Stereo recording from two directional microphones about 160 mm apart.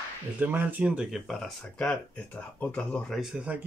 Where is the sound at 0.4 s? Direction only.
10° right (ahead or behind).